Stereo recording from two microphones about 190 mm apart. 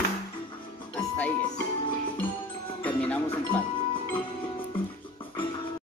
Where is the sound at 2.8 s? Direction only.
10° left (ahead or behind).